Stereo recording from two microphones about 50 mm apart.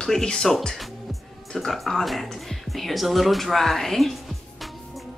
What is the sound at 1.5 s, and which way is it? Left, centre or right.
Speech, centre.